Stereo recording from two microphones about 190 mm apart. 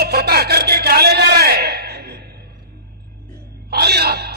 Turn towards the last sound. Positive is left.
turn(degrees=-55)  # may be behind; listen again after turning